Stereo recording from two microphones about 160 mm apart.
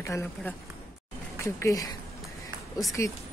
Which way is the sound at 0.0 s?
20° left (ahead or behind).